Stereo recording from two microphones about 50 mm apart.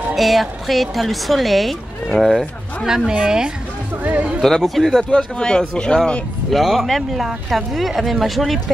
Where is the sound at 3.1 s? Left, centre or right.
Centre.